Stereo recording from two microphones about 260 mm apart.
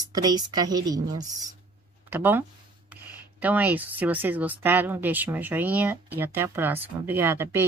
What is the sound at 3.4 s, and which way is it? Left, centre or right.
Speech, centre.